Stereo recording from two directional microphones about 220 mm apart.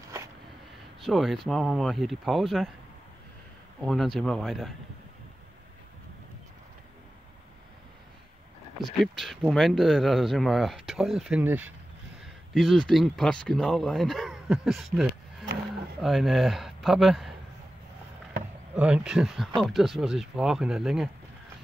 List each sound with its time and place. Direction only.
1.0 s speech: centre (ahead or behind)
3.8 s speech: centre (ahead or behind)
8.7 s speech: centre (ahead or behind)
12.5 s speech: centre (ahead or behind)
18.8 s speech: 5° right (ahead or behind)